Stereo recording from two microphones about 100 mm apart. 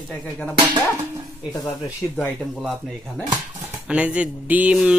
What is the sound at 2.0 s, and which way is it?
Speech, 25° left (ahead or behind).